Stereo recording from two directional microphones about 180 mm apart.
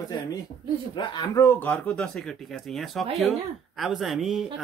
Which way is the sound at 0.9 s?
25° left (ahead or behind).